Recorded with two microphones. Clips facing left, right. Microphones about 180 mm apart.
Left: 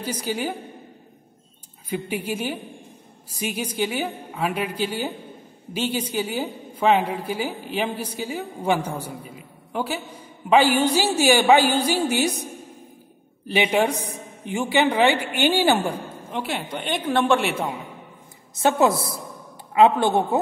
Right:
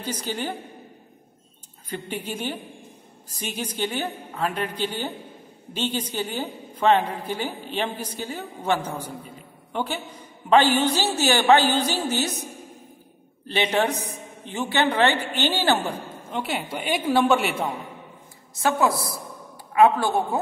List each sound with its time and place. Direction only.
0.0 s a woman's voice: 10° left (ahead or behind)
1.9 s a woman's voice: 10° left (ahead or behind)
13.5 s a woman's voice: 10° left (ahead or behind)
16.3 s a woman's voice: centre (ahead or behind)
18.6 s a woman's voice: 25° left (ahead or behind)